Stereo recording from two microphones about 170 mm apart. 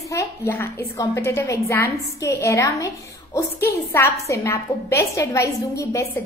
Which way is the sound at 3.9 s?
15° left (ahead or behind).